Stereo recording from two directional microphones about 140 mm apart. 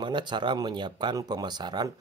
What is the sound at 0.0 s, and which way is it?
Speech, 35° right (ahead or behind).